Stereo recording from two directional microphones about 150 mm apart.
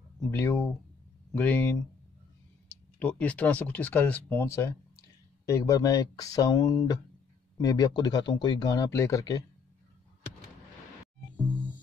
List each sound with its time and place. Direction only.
0.2 s speech: 15° left (ahead or behind)
3.0 s speech: 10° left (ahead or behind)
11.3 s music: 10° right (ahead or behind)